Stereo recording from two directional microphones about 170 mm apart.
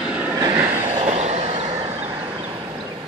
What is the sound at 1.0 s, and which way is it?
Train, 40° right (ahead or behind).